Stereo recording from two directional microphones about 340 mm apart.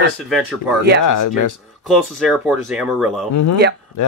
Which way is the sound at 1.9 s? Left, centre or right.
Centre.